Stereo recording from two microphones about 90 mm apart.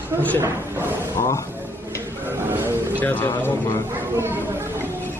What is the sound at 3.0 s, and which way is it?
Speech, 20° left (ahead or behind).